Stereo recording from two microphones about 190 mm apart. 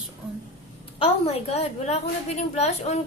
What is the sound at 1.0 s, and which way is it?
A woman's voice, 30° left (ahead or behind).